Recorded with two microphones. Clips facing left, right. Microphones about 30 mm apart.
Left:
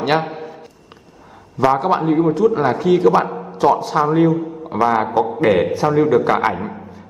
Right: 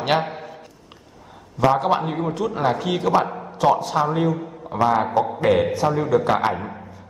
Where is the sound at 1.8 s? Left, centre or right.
Centre.